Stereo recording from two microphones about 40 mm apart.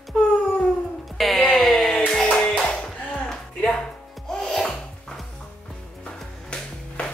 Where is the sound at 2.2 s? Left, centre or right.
Left.